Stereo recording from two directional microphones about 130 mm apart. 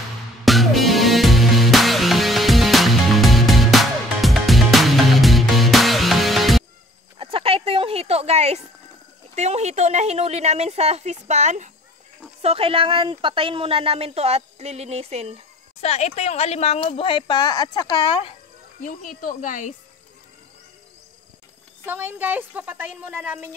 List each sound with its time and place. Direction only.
0.5 s music: centre (ahead or behind)
7.2 s a sound: 45° right (ahead or behind)
9.3 s speech: 60° right (ahead or behind)
12.4 s a woman's voice: 50° right (ahead or behind)
15.8 s speech: 55° left (ahead or behind)
18.8 s speech: 85° left
21.8 s a woman's voice: 15° right (ahead or behind)